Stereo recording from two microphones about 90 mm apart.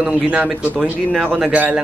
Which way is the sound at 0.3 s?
15° right (ahead or behind).